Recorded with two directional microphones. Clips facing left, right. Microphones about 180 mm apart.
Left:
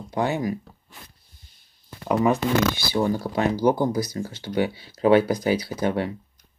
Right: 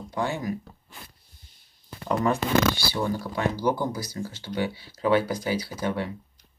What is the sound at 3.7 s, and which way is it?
Speech, 15° left (ahead or behind).